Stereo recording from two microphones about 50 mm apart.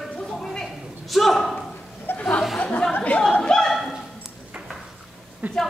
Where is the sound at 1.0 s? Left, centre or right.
Centre.